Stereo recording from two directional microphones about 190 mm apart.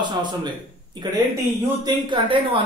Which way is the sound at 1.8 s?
25° right (ahead or behind).